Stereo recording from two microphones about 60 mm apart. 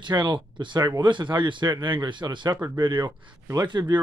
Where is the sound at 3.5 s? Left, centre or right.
Right.